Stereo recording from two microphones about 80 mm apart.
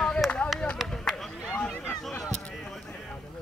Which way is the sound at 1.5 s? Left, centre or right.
Left.